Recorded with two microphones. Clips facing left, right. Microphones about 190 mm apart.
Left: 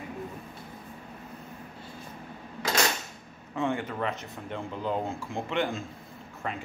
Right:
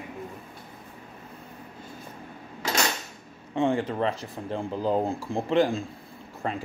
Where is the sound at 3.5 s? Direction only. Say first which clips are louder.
Right 5 dB; 30° right (ahead or behind).